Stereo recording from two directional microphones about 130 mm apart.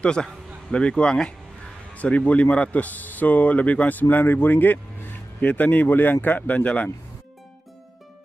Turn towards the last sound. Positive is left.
turn(degrees=10)  # may be behind; listen again after turning